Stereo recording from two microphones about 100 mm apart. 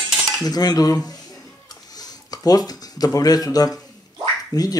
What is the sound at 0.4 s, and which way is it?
Speech, 40° left (ahead or behind).